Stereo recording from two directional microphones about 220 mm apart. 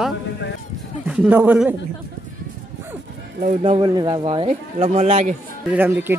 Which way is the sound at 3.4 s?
25° right (ahead or behind).